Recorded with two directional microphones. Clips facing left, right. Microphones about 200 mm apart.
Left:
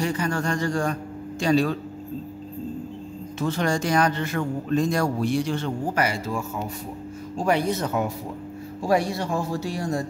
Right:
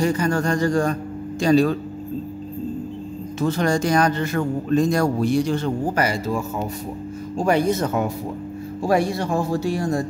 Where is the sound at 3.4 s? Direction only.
40° right (ahead or behind).